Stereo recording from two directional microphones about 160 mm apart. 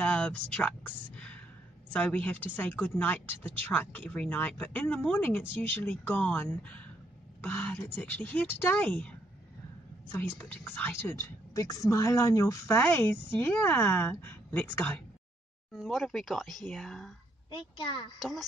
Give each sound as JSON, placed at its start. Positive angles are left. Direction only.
{"t": 0.0, "sound": "a woman's voice", "side_deg": 10}
{"t": 10.1, "sound": "a woman's voice", "side_deg": 15}
{"t": 15.7, "sound": "speech", "side_deg": 0}
{"t": 17.5, "sound": "a child's voice", "side_deg": 30}